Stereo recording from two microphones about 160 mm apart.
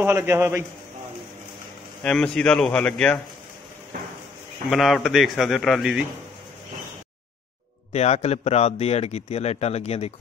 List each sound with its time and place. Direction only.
0.0 s a man's voice: 15° right (ahead or behind)
2.0 s a man's voice: 5° left (ahead or behind)
4.6 s a man's voice: centre (ahead or behind)
7.9 s a man's voice: 40° left (ahead or behind)